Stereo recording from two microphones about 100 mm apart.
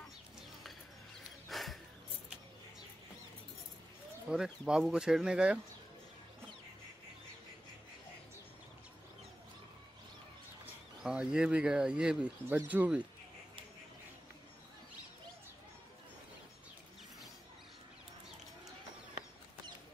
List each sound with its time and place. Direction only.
1.5 s music: centre (ahead or behind)
4.3 s speech: 10° right (ahead or behind)
11.1 s speech: 5° right (ahead or behind)